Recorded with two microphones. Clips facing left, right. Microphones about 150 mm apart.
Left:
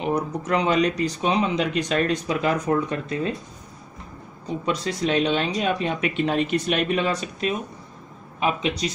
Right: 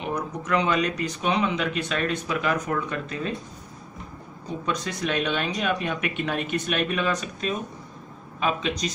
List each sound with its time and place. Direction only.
0.0 s speech: 30° left (ahead or behind)
4.6 s speech: 30° left (ahead or behind)
8.4 s speech: 15° left (ahead or behind)